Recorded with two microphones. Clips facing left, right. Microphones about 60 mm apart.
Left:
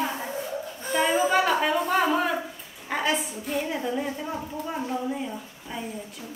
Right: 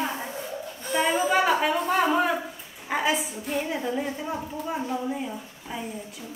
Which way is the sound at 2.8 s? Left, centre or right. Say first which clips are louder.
Right 1 dB; centre.